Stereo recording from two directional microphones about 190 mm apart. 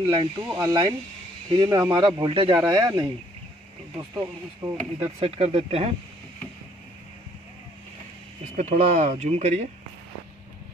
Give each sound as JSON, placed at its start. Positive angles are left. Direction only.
{"t": 0.0, "sound": "speech", "side_deg": -20}
{"t": 4.9, "sound": "speech", "side_deg": -30}
{"t": 8.5, "sound": "speech", "side_deg": -45}